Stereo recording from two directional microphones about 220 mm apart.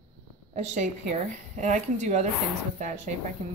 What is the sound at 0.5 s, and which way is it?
Speech, 30° right (ahead or behind).